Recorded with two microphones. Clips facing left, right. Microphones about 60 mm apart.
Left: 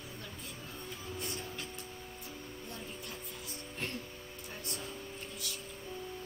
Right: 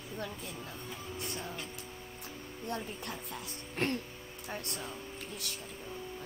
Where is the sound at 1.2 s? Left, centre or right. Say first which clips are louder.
Right 2 dB; centre.